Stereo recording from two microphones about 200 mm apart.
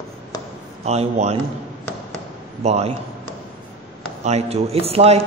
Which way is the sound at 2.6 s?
30° right (ahead or behind).